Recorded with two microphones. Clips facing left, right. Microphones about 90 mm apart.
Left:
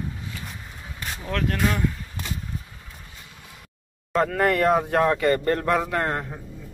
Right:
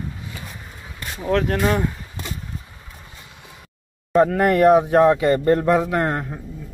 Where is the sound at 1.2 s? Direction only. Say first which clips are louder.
Right 6 dB; 30° right (ahead or behind).